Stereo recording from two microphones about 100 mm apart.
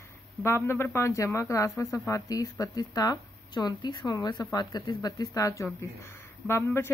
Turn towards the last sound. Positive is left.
turn(degrees=25)  # may be behind; listen again after turning